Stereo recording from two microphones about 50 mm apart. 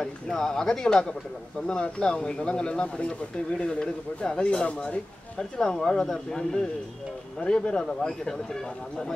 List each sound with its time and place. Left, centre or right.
0.0 s a man's voice: centre
7.3 s a man's voice: left